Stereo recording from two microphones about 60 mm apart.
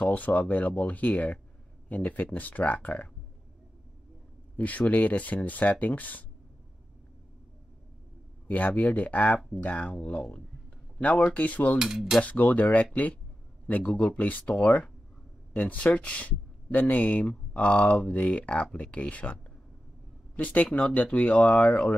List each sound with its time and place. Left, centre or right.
0.0 s speech: left
4.6 s speech: left
8.5 s speech: left
11.8 s cutlery: centre
12.2 s speech: left